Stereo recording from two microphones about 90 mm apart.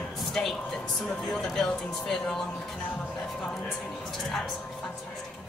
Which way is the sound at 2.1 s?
5° left (ahead or behind).